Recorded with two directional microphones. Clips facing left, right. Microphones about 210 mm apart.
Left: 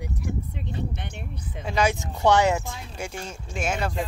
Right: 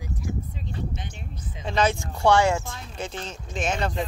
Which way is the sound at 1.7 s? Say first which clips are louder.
Even; 10° left (ahead or behind).